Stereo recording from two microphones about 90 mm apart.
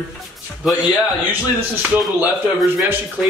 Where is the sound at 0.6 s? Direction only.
5° right (ahead or behind).